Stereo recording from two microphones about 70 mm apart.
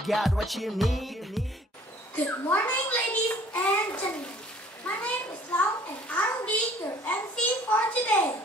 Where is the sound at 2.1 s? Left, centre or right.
Left.